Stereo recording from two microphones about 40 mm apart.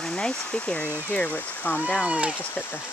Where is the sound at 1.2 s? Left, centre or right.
Left.